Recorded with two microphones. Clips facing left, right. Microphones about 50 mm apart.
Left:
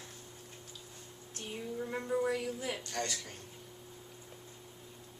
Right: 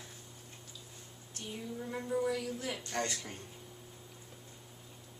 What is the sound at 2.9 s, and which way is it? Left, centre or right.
Speech, centre.